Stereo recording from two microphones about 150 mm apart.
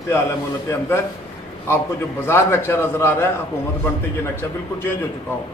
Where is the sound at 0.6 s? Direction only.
15° left (ahead or behind).